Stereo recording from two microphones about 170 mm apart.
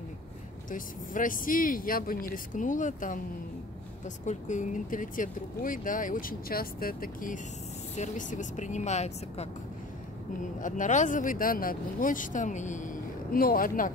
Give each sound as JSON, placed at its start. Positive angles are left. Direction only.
{"t": 0.7, "sound": "speech", "side_deg": 50}
{"t": 4.3, "sound": "speech", "side_deg": 45}
{"t": 10.6, "sound": "speech", "side_deg": 45}